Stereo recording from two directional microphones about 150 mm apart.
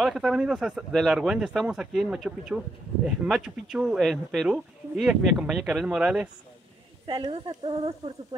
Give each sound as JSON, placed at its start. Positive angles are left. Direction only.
{"t": 0.0, "sound": "speech", "side_deg": -5}
{"t": 7.1, "sound": "speech", "side_deg": -35}